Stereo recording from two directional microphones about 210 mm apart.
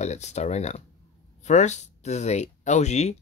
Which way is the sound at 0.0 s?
35° left (ahead or behind).